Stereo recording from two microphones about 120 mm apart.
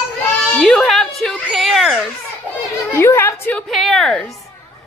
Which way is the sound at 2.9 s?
20° left (ahead or behind).